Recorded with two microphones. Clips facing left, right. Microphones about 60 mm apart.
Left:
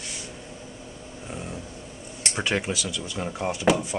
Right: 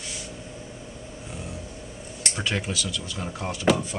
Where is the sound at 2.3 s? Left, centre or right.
Centre.